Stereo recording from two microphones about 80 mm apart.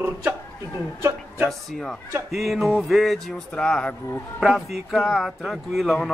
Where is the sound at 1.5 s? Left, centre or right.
Centre.